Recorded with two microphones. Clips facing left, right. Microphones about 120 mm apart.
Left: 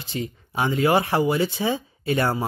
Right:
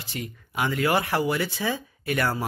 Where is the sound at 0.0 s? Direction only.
25° left (ahead or behind).